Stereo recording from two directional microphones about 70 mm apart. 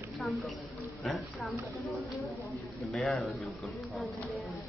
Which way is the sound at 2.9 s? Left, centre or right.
Centre.